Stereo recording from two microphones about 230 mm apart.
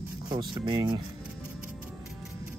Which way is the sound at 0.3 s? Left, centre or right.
Centre.